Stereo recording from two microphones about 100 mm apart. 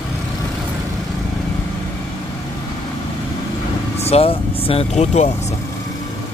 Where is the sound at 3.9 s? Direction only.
90° left.